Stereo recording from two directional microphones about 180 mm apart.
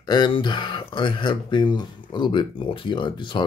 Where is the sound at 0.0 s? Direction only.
25° left (ahead or behind).